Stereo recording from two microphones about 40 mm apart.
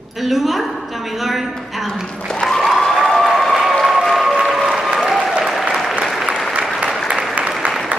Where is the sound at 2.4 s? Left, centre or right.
Centre.